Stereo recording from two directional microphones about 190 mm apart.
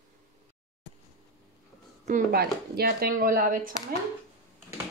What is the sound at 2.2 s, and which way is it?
Speech, 55° right (ahead or behind).